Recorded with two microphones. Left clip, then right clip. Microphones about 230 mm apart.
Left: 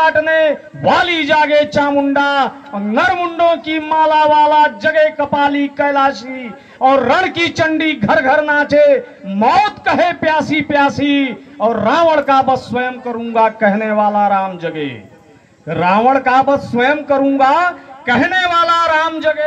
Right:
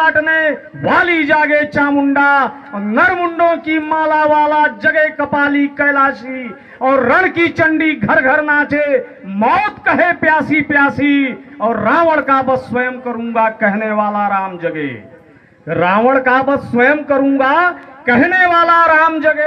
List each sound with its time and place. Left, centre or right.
0.0 s a man's voice: left